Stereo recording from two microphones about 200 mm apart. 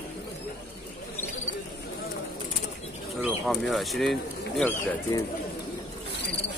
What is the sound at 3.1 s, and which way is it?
Speech, centre (ahead or behind).